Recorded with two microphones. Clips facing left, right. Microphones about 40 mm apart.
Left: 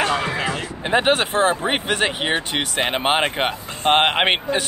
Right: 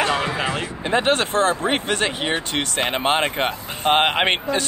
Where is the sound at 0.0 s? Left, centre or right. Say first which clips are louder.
Even; right.